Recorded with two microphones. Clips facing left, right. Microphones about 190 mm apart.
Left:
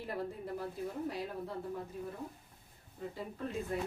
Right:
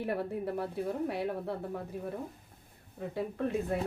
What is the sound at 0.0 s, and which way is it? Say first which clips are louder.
A woman's voice: right 6 dB; 65° right (ahead or behind).